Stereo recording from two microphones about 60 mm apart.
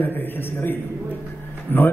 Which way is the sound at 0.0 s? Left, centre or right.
Left.